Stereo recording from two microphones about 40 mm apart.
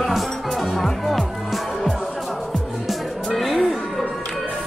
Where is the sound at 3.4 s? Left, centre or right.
Centre.